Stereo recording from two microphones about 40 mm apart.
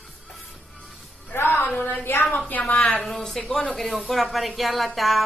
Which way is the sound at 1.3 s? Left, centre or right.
Left.